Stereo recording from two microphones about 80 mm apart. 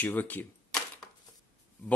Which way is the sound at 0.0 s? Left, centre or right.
Left.